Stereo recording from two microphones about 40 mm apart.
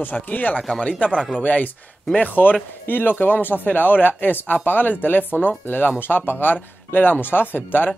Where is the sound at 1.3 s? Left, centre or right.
Left.